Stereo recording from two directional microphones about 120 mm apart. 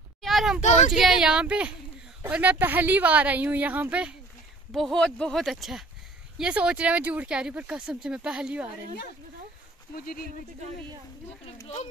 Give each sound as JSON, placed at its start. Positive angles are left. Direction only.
{"t": 0.2, "sound": "a sound", "side_deg": 0}
{"t": 0.6, "sound": "speech", "side_deg": 75}
{"t": 0.9, "sound": "speech", "side_deg": -5}
{"t": 4.7, "sound": "speech", "side_deg": 5}
{"t": 11.6, "sound": "speech", "side_deg": 70}